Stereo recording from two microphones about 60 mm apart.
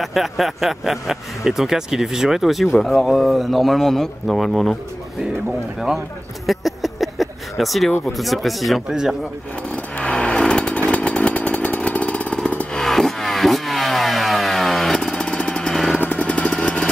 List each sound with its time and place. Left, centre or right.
0.0 s speech: centre
6.4 s a sound: centre
8.2 s speech: centre
9.7 s vehicle: left
10.9 s chainsaw: left
12.7 s vehicle: centre
16.0 s vehicle: left